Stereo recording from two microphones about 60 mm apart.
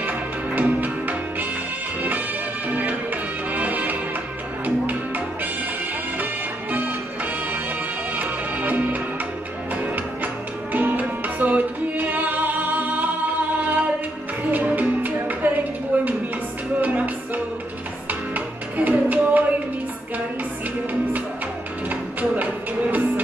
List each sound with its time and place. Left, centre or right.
0.6 s music: right
2.7 s music: right
8.2 s music: right
14.5 s music: right
15.9 s a sound: right
16.8 s music: right
18.3 s music: right
21.8 s music: right